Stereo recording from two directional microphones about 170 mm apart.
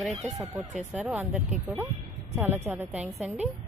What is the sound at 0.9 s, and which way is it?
A woman's voice, 5° right (ahead or behind).